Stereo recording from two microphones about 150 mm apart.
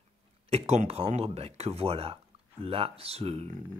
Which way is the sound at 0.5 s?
45° right (ahead or behind).